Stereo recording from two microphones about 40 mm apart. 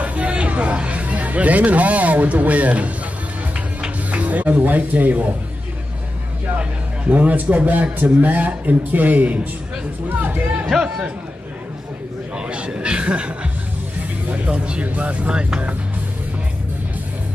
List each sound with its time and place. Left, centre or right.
0.0 s speech: right
4.1 s speech: right
7.1 s a man's voice: right
10.7 s speech: centre
12.4 s a man's voice: right